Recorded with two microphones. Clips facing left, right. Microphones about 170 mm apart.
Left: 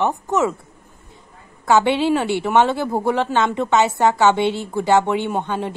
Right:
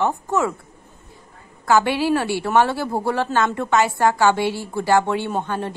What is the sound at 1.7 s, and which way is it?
A woman's voice, 20° left (ahead or behind).